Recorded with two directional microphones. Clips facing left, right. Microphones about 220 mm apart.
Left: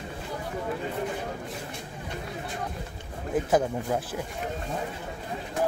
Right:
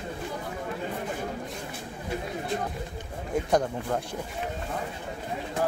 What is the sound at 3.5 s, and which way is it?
Speech, 5° left (ahead or behind).